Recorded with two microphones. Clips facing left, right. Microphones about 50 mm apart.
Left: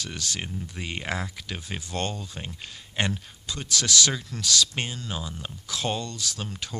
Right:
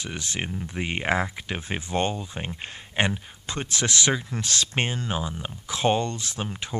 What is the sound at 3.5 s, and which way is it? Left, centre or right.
Speech, right.